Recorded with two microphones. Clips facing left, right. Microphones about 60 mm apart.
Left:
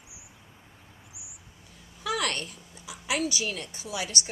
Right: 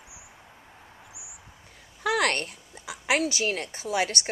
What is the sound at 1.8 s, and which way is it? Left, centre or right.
A woman's voice, right.